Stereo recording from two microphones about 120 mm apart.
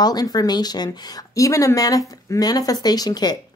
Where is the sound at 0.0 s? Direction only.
35° left (ahead or behind).